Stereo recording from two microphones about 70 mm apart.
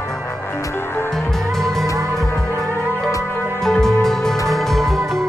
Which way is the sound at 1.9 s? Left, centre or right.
Right.